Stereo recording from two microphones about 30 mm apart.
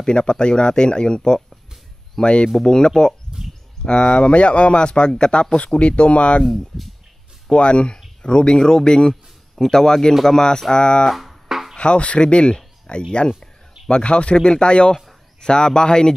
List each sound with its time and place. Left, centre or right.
0.1 s speech: left
6.7 s speech: centre
7.5 s speech: left
10.7 s speech: left
11.4 s music: centre
11.7 s speech: left
12.5 s speech: left